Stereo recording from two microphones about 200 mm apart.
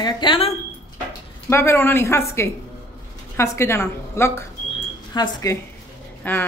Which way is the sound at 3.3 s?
15° left (ahead or behind).